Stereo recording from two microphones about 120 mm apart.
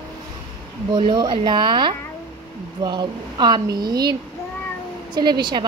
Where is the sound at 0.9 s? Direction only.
40° right (ahead or behind).